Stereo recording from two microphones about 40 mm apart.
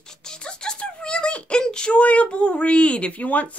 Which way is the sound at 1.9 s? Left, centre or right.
Left.